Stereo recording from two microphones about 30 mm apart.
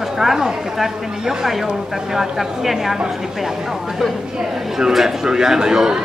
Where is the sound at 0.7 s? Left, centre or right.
Centre.